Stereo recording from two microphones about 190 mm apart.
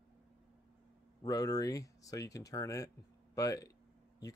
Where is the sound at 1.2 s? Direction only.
20° left (ahead or behind).